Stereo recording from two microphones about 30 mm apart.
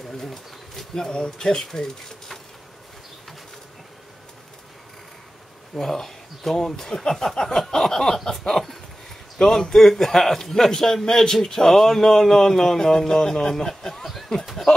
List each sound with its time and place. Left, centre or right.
0.2 s speech: centre
5.8 s speech: centre